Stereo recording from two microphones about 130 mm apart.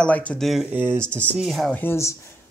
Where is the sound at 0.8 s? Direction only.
20° right (ahead or behind).